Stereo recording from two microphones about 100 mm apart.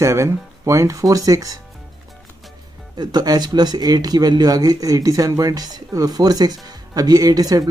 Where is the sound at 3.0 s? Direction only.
45° right (ahead or behind).